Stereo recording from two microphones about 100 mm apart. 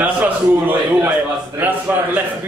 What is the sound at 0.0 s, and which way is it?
A man's voice, 15° right (ahead or behind).